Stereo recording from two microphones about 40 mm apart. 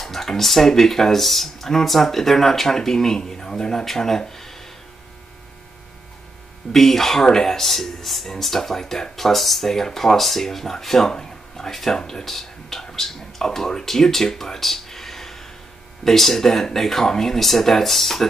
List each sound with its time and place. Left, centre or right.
0.0 s speech: centre
6.7 s speech: centre